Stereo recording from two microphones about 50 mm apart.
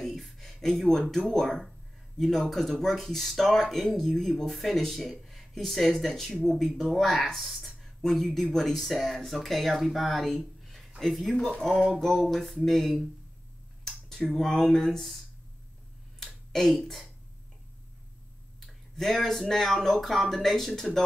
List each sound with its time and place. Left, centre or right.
0.0 s speech: centre
16.8 s a woman's voice: centre
18.9 s speech: centre